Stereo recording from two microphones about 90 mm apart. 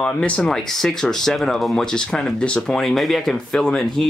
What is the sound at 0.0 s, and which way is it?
Speech, 10° left (ahead or behind).